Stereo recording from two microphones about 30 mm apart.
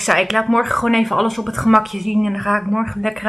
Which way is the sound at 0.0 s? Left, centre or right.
Centre.